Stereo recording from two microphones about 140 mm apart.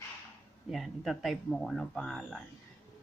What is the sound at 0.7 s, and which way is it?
Speech, centre (ahead or behind).